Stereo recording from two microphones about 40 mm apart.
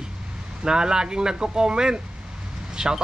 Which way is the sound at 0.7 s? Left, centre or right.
Centre.